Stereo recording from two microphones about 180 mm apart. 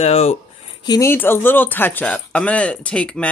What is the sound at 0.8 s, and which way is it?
Speech, 15° left (ahead or behind).